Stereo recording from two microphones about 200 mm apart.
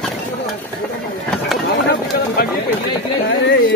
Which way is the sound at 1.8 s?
60° left (ahead or behind).